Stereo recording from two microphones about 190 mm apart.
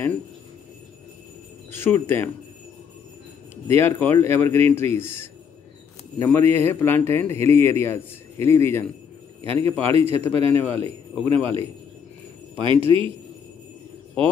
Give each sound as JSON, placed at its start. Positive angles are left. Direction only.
{"t": 1.7, "sound": "speech", "side_deg": 10}
{"t": 3.6, "sound": "speech", "side_deg": 10}
{"t": 9.4, "sound": "a man's voice", "side_deg": -30}